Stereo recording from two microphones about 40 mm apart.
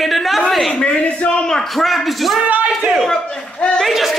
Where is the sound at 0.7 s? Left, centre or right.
Left.